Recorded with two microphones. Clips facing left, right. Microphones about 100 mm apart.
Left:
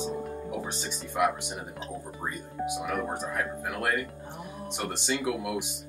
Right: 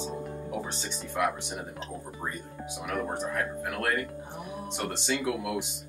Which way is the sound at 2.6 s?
15° left (ahead or behind).